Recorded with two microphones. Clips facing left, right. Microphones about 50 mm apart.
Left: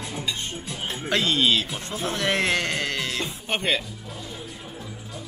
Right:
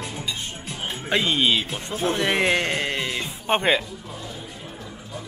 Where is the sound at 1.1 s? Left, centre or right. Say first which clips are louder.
Right 1 dB; centre.